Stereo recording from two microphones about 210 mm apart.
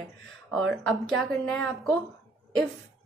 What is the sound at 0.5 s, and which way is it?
A woman's voice, centre (ahead or behind).